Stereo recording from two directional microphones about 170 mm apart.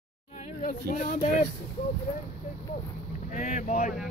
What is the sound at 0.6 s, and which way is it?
Speech, 55° left (ahead or behind).